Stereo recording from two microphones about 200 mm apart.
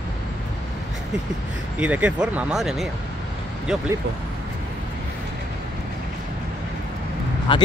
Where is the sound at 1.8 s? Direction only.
5° right (ahead or behind).